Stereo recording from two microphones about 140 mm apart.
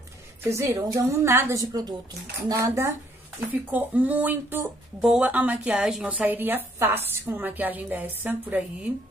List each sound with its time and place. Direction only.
0.4 s a woman's voice: 20° right (ahead or behind)
3.7 s speech: 10° right (ahead or behind)